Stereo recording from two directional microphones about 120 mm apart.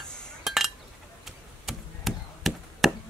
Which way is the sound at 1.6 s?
Centre (ahead or behind).